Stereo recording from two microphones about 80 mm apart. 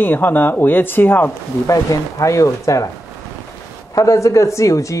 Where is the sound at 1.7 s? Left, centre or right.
Left.